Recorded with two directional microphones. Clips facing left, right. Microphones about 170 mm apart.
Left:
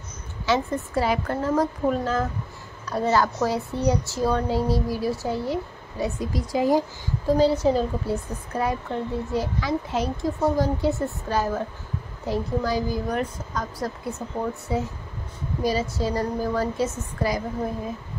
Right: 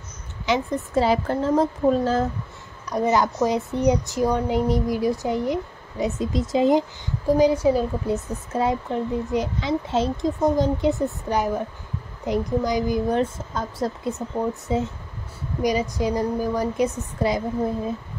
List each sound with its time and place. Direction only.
0.5 s a child's voice: 20° right (ahead or behind)
2.9 s speech: 15° right (ahead or behind)
8.5 s a child's voice: 20° right (ahead or behind)